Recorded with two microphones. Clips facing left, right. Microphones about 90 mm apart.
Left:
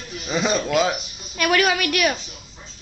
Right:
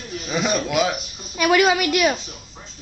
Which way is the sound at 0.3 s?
5° right (ahead or behind).